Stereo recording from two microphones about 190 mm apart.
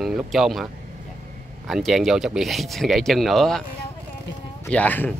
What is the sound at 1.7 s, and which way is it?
Speech, centre (ahead or behind).